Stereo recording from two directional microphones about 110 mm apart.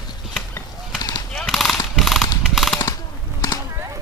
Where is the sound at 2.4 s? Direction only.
Centre (ahead or behind).